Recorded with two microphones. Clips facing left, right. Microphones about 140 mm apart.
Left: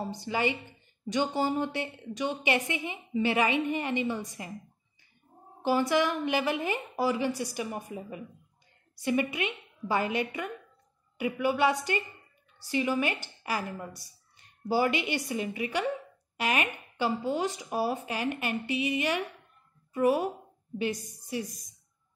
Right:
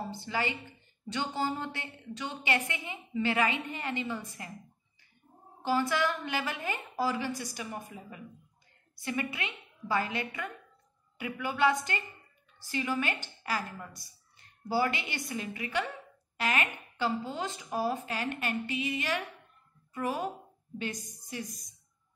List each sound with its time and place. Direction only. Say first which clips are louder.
0.1 s a woman's voice: left 6 dB; 15° left (ahead or behind)
5.6 s a woman's voice: left 3 dB; 15° left (ahead or behind)